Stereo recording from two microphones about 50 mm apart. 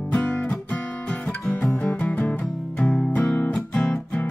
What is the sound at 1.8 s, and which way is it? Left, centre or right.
Music, left.